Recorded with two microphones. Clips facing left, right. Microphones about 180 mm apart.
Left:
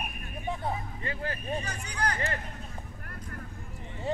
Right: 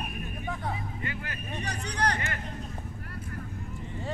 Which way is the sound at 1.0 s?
30° left (ahead or behind).